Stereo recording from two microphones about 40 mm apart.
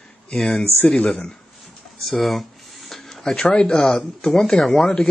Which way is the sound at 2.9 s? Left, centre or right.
Centre.